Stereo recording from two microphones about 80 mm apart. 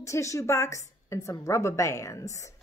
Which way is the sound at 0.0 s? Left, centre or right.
Left.